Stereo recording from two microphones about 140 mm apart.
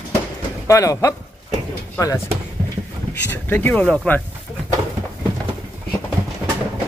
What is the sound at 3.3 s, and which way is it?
Speech, 15° left (ahead or behind).